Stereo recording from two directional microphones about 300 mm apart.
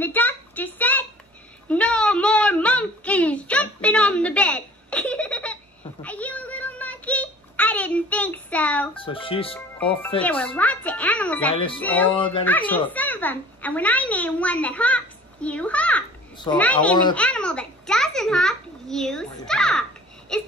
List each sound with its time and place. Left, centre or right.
0.0 s a sound: centre
6.0 s child singing: centre
8.9 s speech: centre
10.2 s music: centre
11.8 s a child's voice: centre
17.1 s a sound: centre